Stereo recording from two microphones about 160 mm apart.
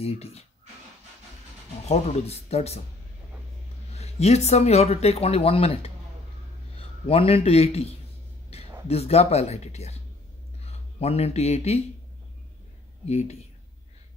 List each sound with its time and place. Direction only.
0.0 s speech: 40° left (ahead or behind)
1.9 s speech: 45° left (ahead or behind)
3.9 s a man's voice: 40° left (ahead or behind)
13.0 s speech: 45° left (ahead or behind)